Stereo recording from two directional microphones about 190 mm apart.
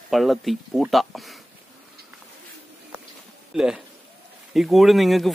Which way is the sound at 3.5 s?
5° right (ahead or behind).